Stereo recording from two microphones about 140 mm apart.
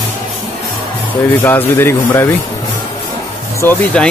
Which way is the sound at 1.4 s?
15° left (ahead or behind).